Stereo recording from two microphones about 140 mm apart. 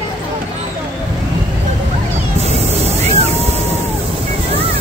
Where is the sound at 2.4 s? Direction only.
50° right (ahead or behind).